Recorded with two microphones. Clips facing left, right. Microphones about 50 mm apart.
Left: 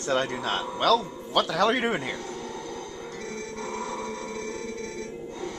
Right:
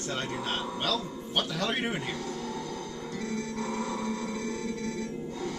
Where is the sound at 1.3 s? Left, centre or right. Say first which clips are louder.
Left 8 dB; left.